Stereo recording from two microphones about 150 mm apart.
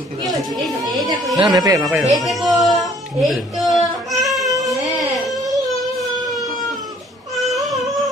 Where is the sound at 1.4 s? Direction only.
25° right (ahead or behind).